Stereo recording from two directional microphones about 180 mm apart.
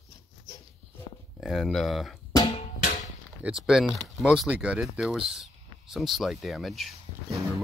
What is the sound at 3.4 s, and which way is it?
Speech, 5° right (ahead or behind).